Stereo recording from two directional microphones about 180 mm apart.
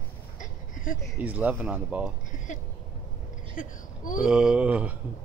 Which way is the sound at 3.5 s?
50° left (ahead or behind).